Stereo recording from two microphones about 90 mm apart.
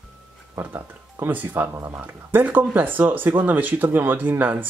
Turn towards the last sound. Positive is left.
turn(degrees=-20)  # may be behind; listen again after turning